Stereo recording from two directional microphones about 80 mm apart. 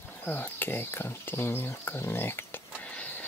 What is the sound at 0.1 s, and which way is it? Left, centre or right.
Speech, left.